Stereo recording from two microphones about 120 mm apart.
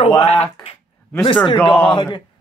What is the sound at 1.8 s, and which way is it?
Speech, 40° left (ahead or behind).